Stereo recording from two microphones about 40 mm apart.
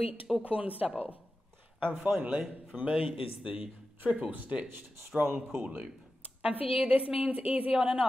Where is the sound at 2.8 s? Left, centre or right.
Right.